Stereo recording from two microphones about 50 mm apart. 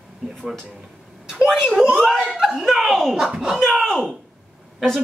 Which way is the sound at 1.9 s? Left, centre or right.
Centre.